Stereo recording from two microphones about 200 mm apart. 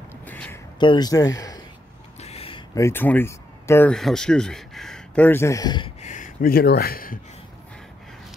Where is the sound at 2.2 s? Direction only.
30° left (ahead or behind).